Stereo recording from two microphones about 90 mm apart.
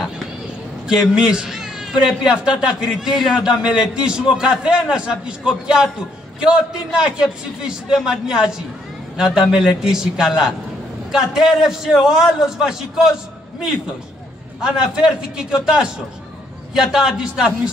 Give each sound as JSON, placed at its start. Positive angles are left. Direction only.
{"t": 0.8, "sound": "a man's voice", "side_deg": -10}
{"t": 14.6, "sound": "a man's voice", "side_deg": -5}